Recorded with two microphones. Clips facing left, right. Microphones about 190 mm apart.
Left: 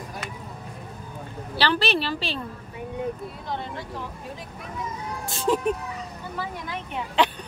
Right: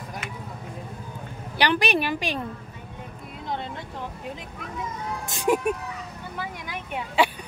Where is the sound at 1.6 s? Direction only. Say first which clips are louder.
Right 1 dB; 15° right (ahead or behind).